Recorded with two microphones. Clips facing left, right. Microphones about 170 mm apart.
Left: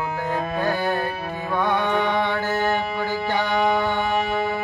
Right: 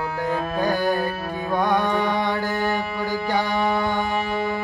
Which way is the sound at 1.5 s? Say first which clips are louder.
Right 1 dB; 15° right (ahead or behind).